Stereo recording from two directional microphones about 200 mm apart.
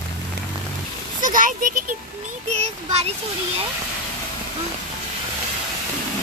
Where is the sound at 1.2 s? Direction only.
40° right (ahead or behind).